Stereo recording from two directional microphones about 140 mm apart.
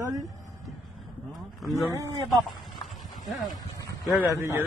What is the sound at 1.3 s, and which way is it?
Speech, centre (ahead or behind).